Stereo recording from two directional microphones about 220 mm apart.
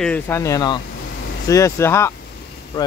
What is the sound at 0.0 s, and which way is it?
Speech, 10° left (ahead or behind).